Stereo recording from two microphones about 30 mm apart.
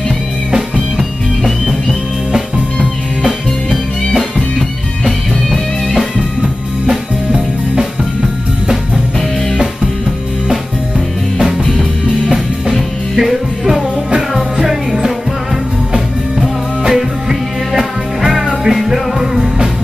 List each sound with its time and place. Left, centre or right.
0.6 s music: centre
3.2 s music: centre
6.9 s music: right
12.7 s music: centre; by 19.7 s right